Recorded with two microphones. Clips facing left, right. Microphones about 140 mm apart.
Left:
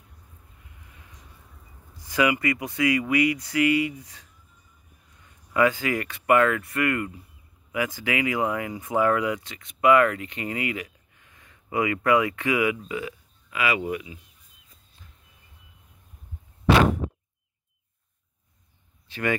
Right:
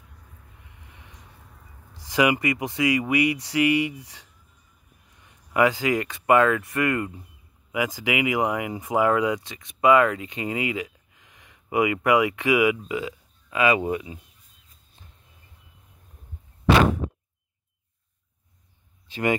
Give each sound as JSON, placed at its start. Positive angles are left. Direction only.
{"t": 2.4, "sound": "speech", "side_deg": -20}
{"t": 5.2, "sound": "speech", "side_deg": -20}
{"t": 19.0, "sound": "a sound", "side_deg": -15}